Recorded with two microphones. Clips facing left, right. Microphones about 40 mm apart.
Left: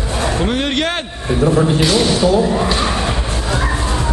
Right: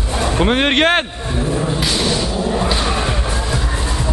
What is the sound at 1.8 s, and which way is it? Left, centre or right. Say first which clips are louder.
Speech: left 4 dB; centre.